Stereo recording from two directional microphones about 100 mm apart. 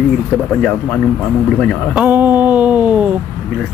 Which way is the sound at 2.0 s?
15° right (ahead or behind).